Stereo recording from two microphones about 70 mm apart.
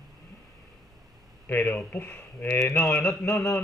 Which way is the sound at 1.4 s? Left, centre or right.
Left.